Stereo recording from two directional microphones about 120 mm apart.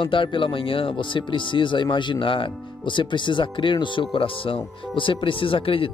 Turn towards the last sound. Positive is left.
turn(degrees=50)  # may be behind; listen again after turning